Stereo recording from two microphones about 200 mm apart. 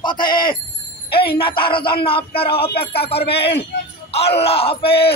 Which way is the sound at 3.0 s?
30° left (ahead or behind).